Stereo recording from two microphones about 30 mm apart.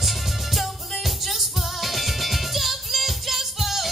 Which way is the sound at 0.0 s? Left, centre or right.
Centre.